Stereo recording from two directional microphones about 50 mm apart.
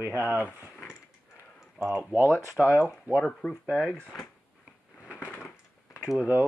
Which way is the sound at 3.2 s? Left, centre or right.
Centre.